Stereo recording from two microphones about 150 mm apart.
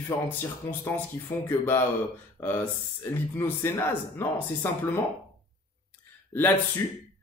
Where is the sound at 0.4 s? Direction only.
15° left (ahead or behind).